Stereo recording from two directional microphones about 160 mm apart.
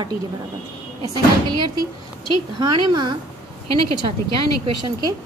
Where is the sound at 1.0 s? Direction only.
25° right (ahead or behind).